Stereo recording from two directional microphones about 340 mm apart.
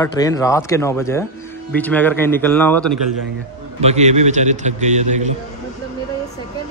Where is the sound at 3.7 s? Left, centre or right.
Centre.